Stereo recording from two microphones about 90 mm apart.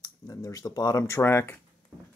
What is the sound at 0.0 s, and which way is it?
Speech, 40° left (ahead or behind).